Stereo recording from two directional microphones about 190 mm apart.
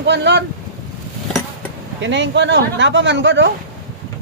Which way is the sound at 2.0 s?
70° right (ahead or behind).